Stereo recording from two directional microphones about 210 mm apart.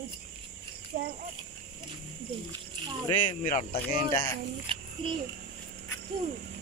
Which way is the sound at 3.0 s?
35° left (ahead or behind).